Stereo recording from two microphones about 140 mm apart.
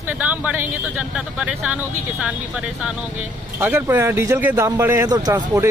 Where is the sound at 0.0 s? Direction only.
10° right (ahead or behind).